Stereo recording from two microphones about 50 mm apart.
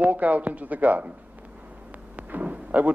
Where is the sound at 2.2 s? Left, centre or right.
Right.